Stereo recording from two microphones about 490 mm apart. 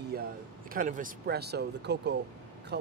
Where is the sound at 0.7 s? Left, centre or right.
Centre.